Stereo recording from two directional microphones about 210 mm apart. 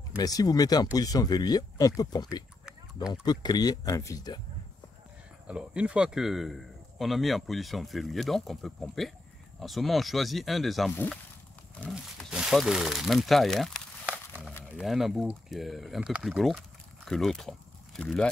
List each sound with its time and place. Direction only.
0.2 s speech: 15° left (ahead or behind)
5.5 s speech: 5° right (ahead or behind)